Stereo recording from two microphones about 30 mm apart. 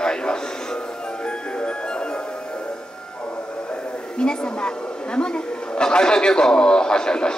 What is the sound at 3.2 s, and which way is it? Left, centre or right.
Speech, left.